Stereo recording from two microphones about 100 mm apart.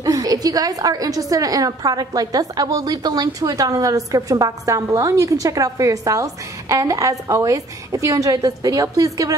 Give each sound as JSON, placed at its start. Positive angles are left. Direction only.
{"t": 0.0, "sound": "a woman's voice", "side_deg": -35}